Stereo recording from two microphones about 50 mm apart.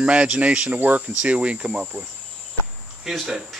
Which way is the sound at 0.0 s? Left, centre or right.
Right.